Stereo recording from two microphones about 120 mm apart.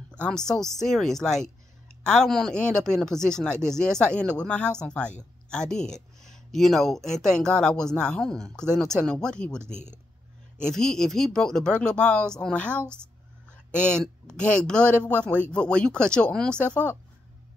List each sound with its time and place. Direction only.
0.1 s speech: 5° left (ahead or behind)
9.7 s speech: 80° left
10.6 s speech: 5° left (ahead or behind)